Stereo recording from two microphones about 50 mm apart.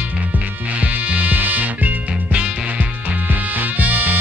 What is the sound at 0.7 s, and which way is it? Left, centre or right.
Music, right.